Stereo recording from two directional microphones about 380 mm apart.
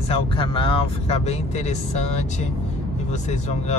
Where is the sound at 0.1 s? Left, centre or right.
Centre.